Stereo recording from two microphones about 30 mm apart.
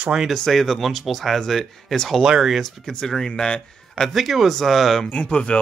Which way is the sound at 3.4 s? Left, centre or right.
Left.